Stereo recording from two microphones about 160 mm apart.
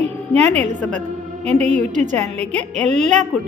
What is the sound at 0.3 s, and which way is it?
A woman's voice, 45° right (ahead or behind).